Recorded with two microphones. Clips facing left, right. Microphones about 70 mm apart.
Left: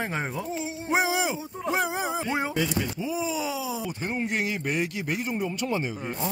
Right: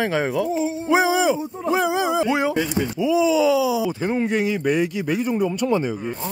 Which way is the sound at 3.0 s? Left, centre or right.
Right.